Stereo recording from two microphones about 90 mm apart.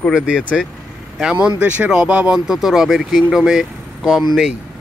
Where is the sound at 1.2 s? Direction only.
15° right (ahead or behind).